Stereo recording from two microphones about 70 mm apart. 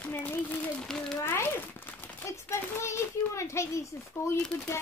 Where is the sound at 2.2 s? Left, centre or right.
Left.